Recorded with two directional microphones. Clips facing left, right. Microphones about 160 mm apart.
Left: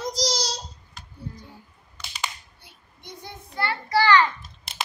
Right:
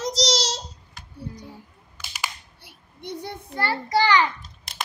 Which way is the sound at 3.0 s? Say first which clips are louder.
Right 8 dB; 60° right (ahead or behind).